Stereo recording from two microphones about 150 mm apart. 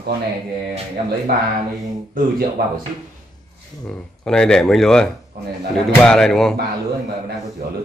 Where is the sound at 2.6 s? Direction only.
90° right.